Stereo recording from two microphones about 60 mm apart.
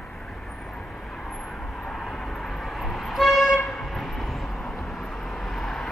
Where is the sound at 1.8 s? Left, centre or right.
Centre.